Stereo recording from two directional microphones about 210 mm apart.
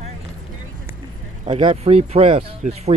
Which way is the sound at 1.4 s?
25° right (ahead or behind).